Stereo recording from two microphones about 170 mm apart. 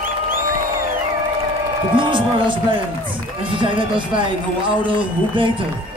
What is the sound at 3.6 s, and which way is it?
A man's voice, 30° right (ahead or behind).